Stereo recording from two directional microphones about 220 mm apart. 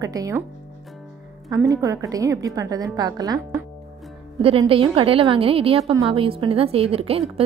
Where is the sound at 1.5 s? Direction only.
15° right (ahead or behind).